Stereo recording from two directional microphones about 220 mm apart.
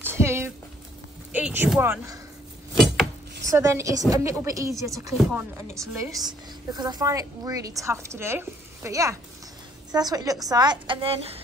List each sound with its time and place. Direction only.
0.0 s a sound: 10° right (ahead or behind)
1.3 s a woman's voice: 10° right (ahead or behind)
3.4 s a woman's voice: 15° right (ahead or behind)